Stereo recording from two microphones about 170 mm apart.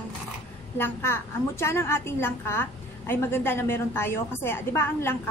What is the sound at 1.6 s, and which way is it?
A woman's voice, 15° left (ahead or behind).